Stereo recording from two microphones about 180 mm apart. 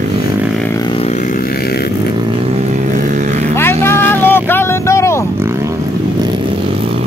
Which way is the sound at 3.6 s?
15° left (ahead or behind).